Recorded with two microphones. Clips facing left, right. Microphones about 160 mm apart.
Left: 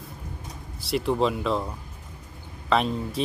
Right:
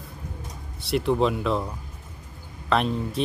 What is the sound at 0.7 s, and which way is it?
Speech, centre (ahead or behind).